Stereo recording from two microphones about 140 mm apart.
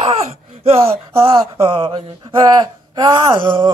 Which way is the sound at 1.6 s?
40° right (ahead or behind).